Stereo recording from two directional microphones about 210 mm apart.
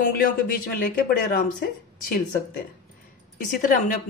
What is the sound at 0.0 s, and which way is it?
A woman's voice, 40° left (ahead or behind).